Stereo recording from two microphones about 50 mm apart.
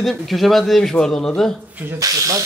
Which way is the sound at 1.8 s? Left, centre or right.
Right.